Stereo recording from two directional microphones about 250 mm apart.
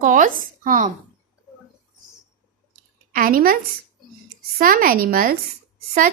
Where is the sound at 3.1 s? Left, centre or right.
Right.